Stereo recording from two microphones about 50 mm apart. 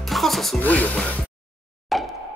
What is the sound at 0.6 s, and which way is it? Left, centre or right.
Speech, left.